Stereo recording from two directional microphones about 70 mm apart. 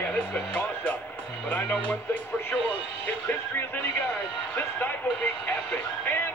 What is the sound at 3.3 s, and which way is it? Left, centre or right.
Music, left.